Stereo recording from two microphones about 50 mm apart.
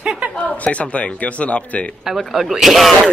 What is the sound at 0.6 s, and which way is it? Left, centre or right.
Speech, left.